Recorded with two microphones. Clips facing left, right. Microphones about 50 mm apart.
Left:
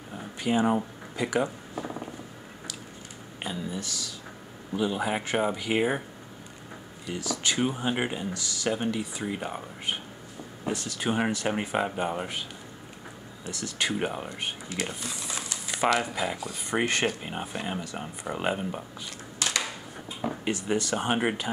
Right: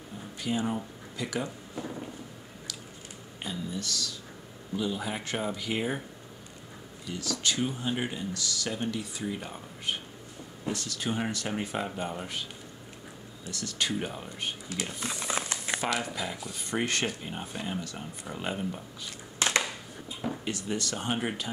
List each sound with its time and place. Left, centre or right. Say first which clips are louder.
0.4 s speech: left 6 dB; left
3.4 s speech: left 1 dB; centre
7.1 s speech: left 2 dB; centre
13.5 s speech: left 2 dB; centre
13.9 s speech: left 4 dB; left
14.4 s speech: right 1 dB; centre
15.0 s a sound: right 3 dB; right
16.0 s speech: left 4 dB; centre
20.2 s speech: left 4 dB; left